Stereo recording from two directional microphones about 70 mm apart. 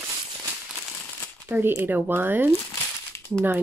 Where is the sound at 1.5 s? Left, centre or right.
Right.